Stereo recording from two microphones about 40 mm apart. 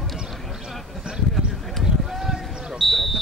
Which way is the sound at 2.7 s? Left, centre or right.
Centre.